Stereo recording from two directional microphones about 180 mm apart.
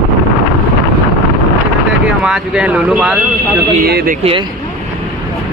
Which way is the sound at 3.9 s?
60° right (ahead or behind).